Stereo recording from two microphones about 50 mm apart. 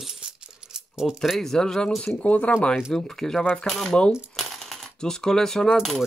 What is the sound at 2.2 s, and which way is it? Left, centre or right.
Speech, left.